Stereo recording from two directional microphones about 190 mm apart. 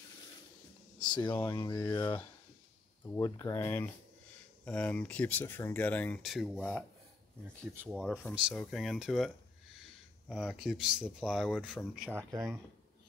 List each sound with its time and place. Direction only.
0.9 s a sound: 25° left (ahead or behind)
1.4 s speech: 15° left (ahead or behind)
3.2 s speech: 20° left (ahead or behind)
7.7 s speech: 10° right (ahead or behind)
12.0 s speech: 10° right (ahead or behind)